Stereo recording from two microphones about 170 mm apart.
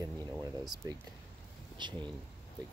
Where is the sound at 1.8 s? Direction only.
25° right (ahead or behind).